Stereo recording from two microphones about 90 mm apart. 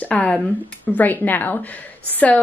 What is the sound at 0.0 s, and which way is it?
Speech, 15° left (ahead or behind).